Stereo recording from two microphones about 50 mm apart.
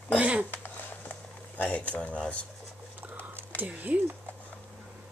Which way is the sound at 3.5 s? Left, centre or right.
Right.